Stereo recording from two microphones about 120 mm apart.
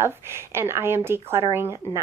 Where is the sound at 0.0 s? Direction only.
20° right (ahead or behind).